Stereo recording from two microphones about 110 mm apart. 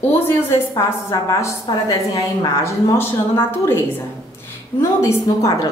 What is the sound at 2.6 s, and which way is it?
A woman's voice, 20° left (ahead or behind).